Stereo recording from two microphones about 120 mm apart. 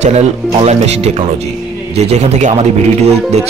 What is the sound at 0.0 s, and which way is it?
Speech, 70° right (ahead or behind).